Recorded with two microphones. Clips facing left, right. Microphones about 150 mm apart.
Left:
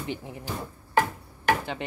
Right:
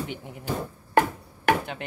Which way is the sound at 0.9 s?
60° right (ahead or behind).